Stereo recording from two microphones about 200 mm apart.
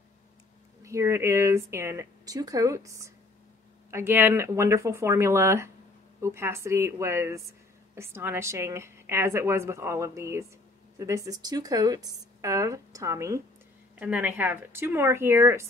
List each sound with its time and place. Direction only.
0.8 s a woman's voice: 15° right (ahead or behind)